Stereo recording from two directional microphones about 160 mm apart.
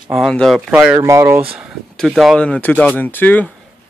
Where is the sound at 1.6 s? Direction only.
5° right (ahead or behind).